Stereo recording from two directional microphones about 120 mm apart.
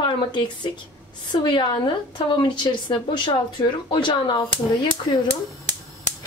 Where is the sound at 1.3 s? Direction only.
40° left (ahead or behind).